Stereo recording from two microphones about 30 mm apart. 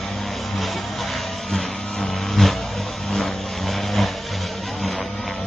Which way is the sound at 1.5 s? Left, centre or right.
Centre.